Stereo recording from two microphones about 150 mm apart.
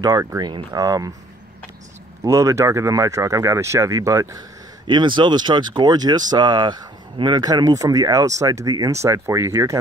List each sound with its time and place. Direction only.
0.0 s speech: 20° right (ahead or behind)
2.2 s speech: 20° right (ahead or behind)
4.8 s speech: 30° right (ahead or behind)